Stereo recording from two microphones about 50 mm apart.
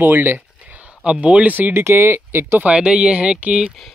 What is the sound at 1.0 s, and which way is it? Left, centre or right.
Speech, right.